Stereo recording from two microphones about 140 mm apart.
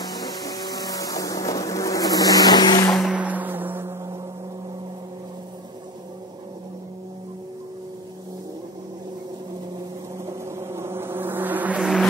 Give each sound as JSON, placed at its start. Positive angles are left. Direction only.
{"t": 0.4, "sound": "a sound", "side_deg": 25}
{"t": 2.9, "sound": "music", "side_deg": -5}
{"t": 10.2, "sound": "vehicle", "side_deg": -20}